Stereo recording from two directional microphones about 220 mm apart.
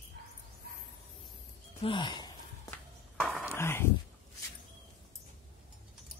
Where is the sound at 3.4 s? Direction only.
10° left (ahead or behind).